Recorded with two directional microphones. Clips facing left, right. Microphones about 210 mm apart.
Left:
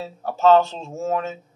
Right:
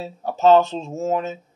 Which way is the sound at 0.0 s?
15° right (ahead or behind).